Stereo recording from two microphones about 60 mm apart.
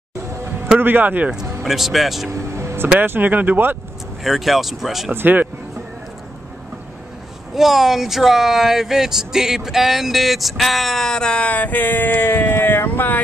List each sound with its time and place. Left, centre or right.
0.3 s a sound: right
0.7 s speech: right
1.6 s speech: centre
2.5 s music: right
3.0 s speech: right
4.2 s speech: centre
5.1 s speech: right
7.5 s speech: centre; by 13.2 s left